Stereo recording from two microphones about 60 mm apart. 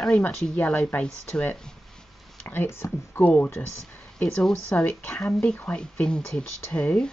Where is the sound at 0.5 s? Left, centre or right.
Left.